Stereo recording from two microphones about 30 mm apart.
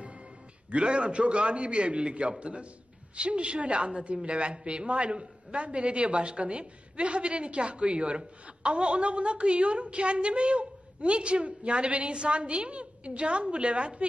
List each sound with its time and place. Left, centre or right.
0.7 s a woman's voice: right